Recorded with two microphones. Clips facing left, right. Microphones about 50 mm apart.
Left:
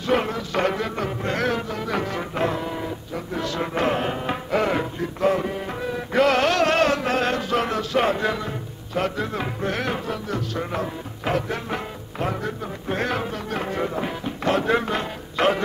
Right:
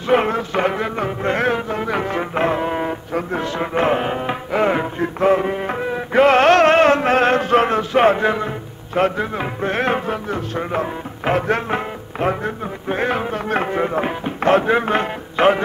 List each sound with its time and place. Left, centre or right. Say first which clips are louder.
0.0 s music: right 6 dB; right
0.6 s music: right 1 dB; right
3.3 s music: right 3 dB; right
4.6 s music: right 5 dB; right
9.7 s music: right 8 dB; right
14.6 s music: right 4 dB; right
14.9 s speech: right 7 dB; right